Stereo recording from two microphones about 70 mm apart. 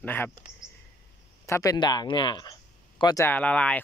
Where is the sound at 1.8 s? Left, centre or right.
Left.